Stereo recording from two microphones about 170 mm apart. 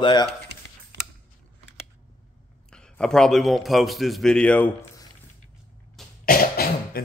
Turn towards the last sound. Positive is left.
turn(degrees=60)  # may be behind; listen again after turning